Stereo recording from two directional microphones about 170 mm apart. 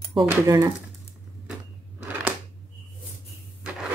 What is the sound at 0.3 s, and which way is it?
Speech, 15° right (ahead or behind).